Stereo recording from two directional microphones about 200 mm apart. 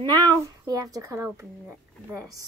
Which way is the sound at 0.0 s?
20° right (ahead or behind).